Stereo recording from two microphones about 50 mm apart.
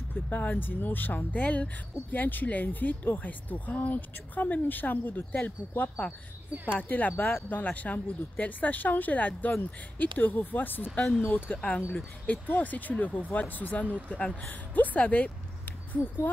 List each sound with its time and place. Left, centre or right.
0.1 s speech: left
6.6 s speech: left
11.5 s speech: left
12.3 s speech: left
13.8 s speech: right
14.1 s speech: left
14.4 s speech: left
15.9 s speech: left